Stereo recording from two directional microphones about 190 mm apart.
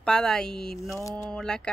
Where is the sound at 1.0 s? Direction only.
15° left (ahead or behind).